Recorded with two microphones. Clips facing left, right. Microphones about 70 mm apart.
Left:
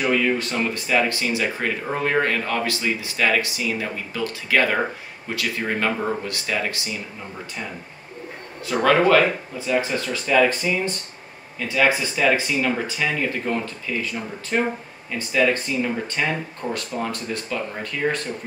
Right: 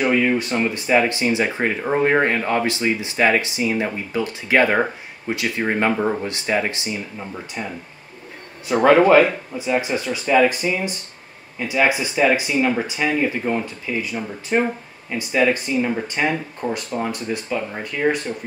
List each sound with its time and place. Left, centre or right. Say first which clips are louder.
0.0 s speech: right 3 dB; centre
8.6 s speech: right 4 dB; right